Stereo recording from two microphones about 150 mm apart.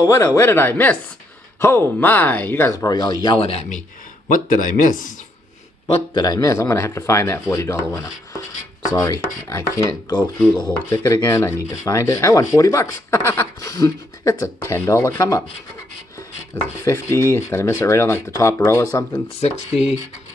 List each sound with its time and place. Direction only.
0.0 s speech: 20° left (ahead or behind)
3.3 s speech: 45° left (ahead or behind)
4.3 s speech: 65° left (ahead or behind)
5.9 s speech: 30° left (ahead or behind)
9.5 s speech: 20° left (ahead or behind)
16.8 s speech: 20° left (ahead or behind)
19.2 s speech: 45° left (ahead or behind)